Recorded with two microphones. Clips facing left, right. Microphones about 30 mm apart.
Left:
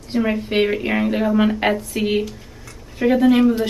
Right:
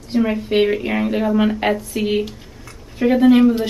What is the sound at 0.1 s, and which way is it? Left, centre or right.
Speech, centre.